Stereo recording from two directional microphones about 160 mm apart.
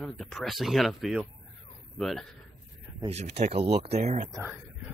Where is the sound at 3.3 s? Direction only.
40° right (ahead or behind).